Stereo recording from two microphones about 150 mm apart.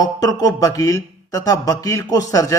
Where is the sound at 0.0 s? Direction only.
25° left (ahead or behind).